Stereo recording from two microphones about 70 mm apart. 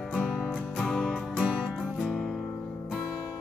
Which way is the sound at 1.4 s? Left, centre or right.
Centre.